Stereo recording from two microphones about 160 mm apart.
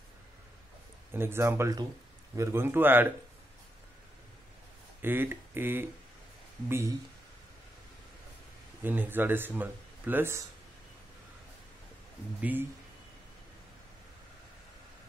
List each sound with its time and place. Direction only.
1.1 s speech: 15° right (ahead or behind)
5.0 s speech: 15° right (ahead or behind)
8.8 s speech: 10° right (ahead or behind)
12.4 s speech: 10° right (ahead or behind)